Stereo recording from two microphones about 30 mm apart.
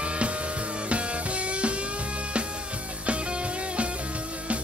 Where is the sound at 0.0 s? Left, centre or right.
Right.